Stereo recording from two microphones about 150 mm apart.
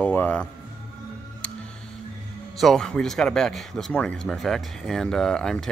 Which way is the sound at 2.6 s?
Centre (ahead or behind).